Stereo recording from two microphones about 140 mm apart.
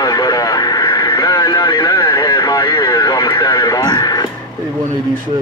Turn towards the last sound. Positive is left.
turn(degrees=30)  # may be behind; listen again after turning